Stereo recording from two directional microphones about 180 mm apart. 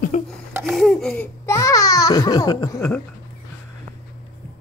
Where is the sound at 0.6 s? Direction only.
Centre (ahead or behind).